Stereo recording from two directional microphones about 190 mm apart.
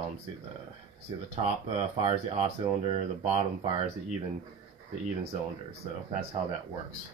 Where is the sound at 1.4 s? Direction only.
30° right (ahead or behind).